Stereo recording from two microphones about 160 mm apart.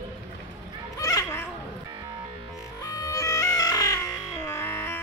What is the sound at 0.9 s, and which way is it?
Children playing, 20° left (ahead or behind).